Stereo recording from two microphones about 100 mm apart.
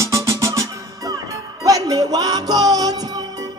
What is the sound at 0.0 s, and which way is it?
Music, 30° right (ahead or behind).